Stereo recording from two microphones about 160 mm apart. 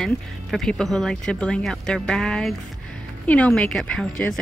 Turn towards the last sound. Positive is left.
turn(degrees=5)  # may be behind; listen again after turning